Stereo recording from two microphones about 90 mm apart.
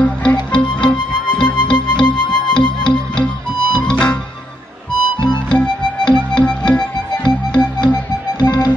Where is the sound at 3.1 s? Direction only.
15° left (ahead or behind).